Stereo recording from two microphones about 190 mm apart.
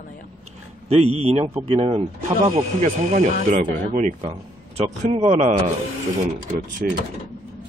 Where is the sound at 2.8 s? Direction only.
45° right (ahead or behind).